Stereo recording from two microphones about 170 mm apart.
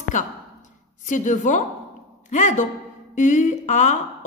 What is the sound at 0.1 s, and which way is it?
A man's voice, 50° left (ahead or behind).